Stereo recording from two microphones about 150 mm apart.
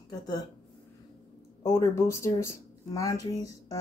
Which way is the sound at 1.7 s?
20° left (ahead or behind).